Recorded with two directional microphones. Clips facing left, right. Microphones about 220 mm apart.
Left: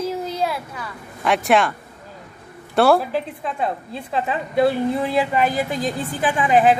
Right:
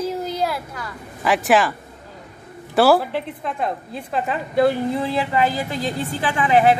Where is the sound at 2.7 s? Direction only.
Centre (ahead or behind).